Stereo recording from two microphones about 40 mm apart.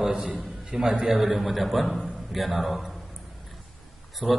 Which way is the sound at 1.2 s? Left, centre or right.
Centre.